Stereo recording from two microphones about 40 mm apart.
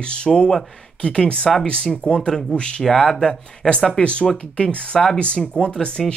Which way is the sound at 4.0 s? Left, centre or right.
Left.